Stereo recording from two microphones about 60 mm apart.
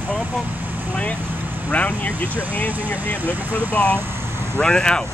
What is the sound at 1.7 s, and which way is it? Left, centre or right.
Speech, left.